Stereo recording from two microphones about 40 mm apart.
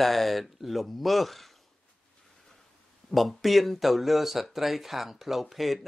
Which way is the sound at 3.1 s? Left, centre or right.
Centre.